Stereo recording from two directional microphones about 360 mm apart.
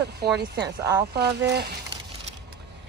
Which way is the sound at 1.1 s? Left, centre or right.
Right.